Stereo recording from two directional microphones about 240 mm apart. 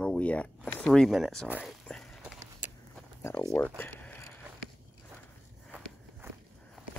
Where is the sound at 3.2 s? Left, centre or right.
Centre.